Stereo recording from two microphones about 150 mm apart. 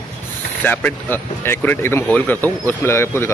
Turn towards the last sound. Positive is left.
turn(degrees=15)  # may be behind; listen again after turning